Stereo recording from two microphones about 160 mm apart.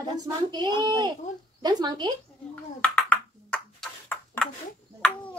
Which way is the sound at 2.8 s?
10° left (ahead or behind).